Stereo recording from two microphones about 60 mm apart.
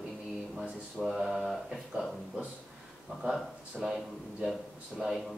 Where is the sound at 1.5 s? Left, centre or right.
Centre.